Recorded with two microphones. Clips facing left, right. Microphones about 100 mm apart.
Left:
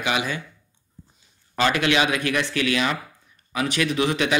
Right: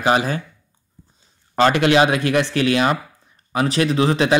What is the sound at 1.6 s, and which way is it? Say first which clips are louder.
Speech: right 6 dB; 35° right (ahead or behind).